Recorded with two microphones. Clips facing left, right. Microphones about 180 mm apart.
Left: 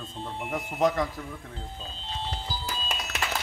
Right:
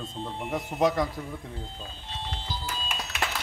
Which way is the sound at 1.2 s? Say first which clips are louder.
Right 1 dB; 15° right (ahead or behind).